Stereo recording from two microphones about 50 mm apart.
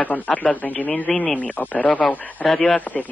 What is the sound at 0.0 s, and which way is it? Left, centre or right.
A man's voice, left.